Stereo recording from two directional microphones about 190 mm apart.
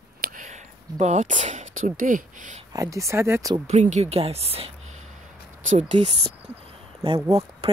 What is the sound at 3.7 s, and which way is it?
Speech, 35° right (ahead or behind).